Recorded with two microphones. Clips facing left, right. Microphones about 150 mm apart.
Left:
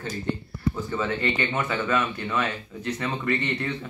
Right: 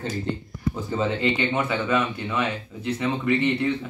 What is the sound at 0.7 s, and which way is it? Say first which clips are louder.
Speech: right 6 dB; 25° right (ahead or behind).